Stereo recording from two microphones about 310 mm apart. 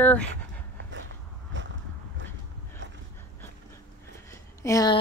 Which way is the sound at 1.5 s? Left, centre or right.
Right.